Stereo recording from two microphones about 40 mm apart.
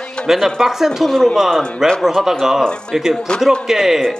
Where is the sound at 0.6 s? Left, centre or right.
Centre.